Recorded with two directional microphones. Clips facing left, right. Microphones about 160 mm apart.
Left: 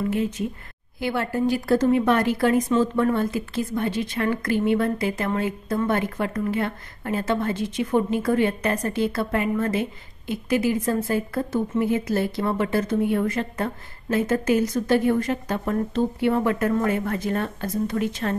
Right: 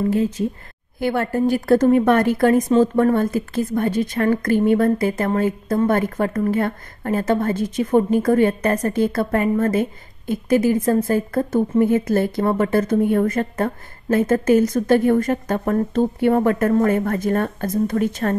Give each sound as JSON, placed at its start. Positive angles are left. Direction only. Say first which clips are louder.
{"t": 0.1, "sound": "speech", "louder": "right 5 dB", "side_deg": -35}
{"t": 0.9, "sound": "a woman's voice", "louder": "right 4 dB", "side_deg": -50}